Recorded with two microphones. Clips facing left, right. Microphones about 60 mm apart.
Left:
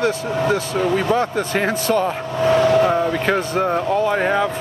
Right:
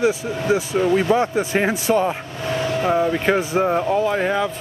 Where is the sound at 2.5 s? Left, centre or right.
Left.